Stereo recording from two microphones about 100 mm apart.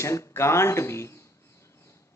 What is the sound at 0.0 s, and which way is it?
A man's voice, 25° left (ahead or behind).